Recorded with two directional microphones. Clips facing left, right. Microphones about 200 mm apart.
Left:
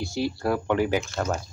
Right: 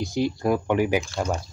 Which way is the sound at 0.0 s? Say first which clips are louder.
Right 3 dB; 20° right (ahead or behind).